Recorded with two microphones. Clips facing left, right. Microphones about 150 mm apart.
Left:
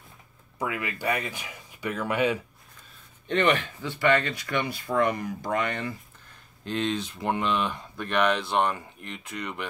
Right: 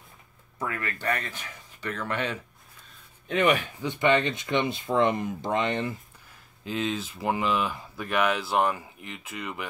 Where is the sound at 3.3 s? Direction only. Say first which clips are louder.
Even; 5° right (ahead or behind).